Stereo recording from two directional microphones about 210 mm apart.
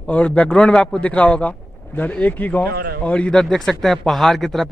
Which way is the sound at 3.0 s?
5° left (ahead or behind).